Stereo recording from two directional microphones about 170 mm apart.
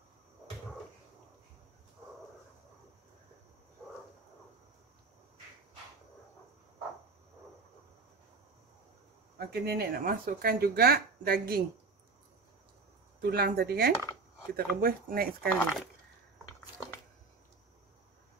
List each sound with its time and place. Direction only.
9.4 s speech: 65° right (ahead or behind)
13.2 s speech: 65° right (ahead or behind)
15.5 s speech: 5° left (ahead or behind)